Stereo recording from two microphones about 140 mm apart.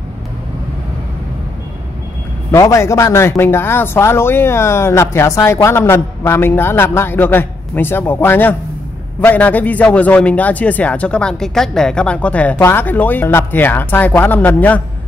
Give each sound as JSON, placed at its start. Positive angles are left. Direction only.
{"t": 2.5, "sound": "speech", "side_deg": 20}